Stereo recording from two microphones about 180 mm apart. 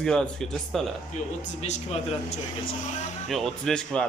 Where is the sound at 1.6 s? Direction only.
35° left (ahead or behind).